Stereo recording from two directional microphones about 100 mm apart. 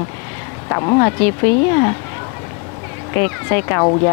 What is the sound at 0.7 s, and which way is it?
Speech, 35° left (ahead or behind).